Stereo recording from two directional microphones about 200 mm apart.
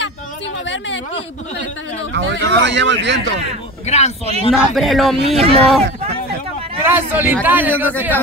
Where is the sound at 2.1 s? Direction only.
60° right (ahead or behind).